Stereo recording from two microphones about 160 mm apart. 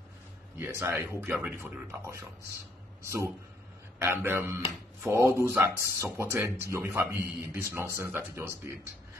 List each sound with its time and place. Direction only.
0.6 s speech: 15° right (ahead or behind)